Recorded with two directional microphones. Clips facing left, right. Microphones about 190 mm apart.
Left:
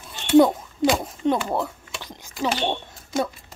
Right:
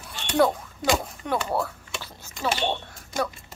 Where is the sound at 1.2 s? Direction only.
20° left (ahead or behind).